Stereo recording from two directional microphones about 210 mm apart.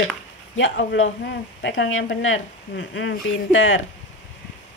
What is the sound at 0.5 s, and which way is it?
A woman's voice, 60° left (ahead or behind).